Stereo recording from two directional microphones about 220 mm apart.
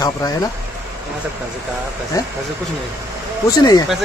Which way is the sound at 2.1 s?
15° left (ahead or behind).